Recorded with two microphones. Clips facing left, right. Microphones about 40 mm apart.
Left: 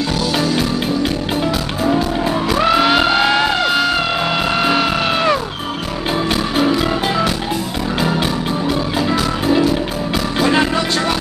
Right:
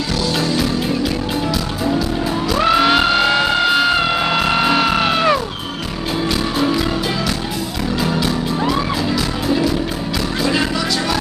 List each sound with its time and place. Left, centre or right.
2.6 s music: centre
10.4 s music: left